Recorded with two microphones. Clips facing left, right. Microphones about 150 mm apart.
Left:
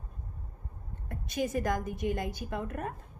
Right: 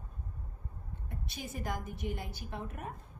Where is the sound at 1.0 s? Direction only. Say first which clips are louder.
Left 11 dB; 90° left.